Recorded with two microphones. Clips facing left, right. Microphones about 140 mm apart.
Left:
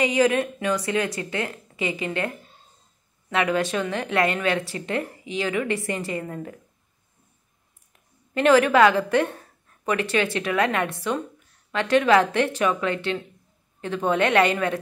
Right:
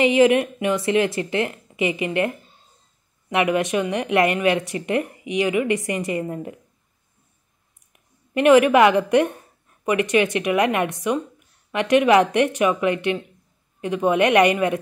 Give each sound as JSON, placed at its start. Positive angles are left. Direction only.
{"t": 0.0, "sound": "a woman's voice", "side_deg": -25}
{"t": 7.9, "sound": "a woman's voice", "side_deg": -15}